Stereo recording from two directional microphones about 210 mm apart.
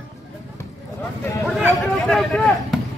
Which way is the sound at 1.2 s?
10° left (ahead or behind).